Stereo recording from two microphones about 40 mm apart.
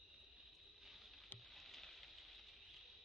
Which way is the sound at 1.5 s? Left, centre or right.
Centre.